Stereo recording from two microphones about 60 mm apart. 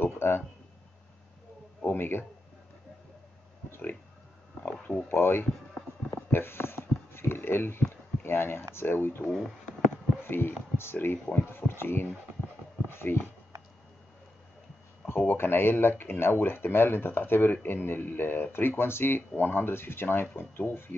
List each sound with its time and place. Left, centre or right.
0.0 s speech: left
1.9 s speech: left
5.0 s speech: left
6.3 s a sound: left
8.7 s speech: left
9.3 s speech: centre
10.2 s speech: left
12.9 s a sound: left
15.0 s speech: left